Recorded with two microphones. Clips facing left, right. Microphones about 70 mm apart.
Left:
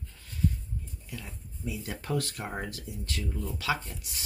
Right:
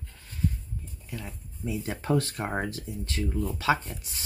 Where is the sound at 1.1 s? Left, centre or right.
Right.